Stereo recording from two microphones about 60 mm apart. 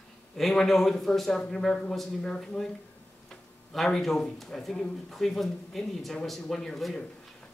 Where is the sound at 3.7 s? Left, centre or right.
Centre.